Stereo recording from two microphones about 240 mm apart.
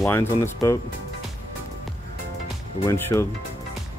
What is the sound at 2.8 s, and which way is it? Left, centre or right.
Speech, centre.